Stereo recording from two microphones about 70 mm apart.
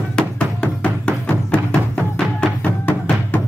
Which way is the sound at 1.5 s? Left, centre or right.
Centre.